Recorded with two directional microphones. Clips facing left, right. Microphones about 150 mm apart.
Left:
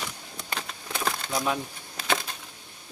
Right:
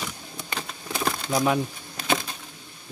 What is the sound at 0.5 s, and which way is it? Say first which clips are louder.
Crumpling: right 1 dB; 5° right (ahead or behind).